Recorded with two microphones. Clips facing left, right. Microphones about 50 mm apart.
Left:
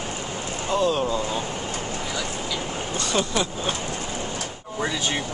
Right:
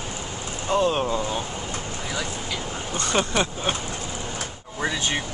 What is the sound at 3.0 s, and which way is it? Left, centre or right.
Speech, right.